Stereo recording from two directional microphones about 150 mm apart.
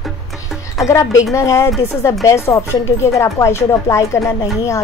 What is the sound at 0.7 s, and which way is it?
Speech, 20° left (ahead or behind).